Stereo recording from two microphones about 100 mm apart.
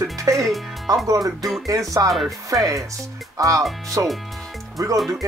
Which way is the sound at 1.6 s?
35° right (ahead or behind).